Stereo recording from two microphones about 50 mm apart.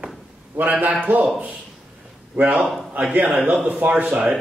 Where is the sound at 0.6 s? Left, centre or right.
Right.